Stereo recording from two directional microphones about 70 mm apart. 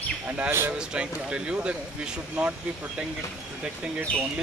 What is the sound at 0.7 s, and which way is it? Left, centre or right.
Speech, centre.